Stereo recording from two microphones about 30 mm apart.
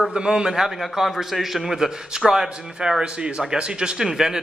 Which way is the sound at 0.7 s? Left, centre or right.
Centre.